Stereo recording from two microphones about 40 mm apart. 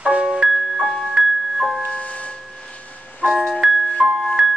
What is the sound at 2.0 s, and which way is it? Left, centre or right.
Music, left.